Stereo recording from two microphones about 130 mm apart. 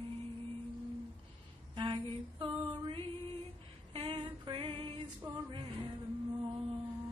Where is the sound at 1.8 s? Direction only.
35° right (ahead or behind).